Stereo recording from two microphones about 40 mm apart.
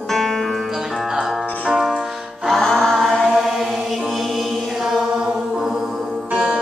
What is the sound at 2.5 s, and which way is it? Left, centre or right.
Chant, centre.